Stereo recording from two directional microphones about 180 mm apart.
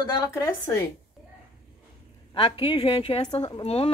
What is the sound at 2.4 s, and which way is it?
A woman's voice, 30° left (ahead or behind).